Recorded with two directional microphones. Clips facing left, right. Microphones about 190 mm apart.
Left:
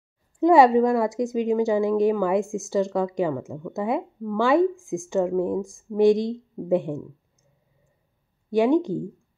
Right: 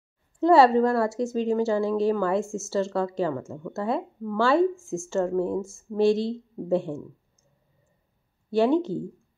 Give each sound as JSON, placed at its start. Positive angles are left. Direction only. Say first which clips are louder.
{"t": 0.4, "sound": "a woman's voice", "louder": "left 2 dB", "side_deg": 15}
{"t": 8.5, "sound": "a woman's voice", "louder": "left 2 dB", "side_deg": 15}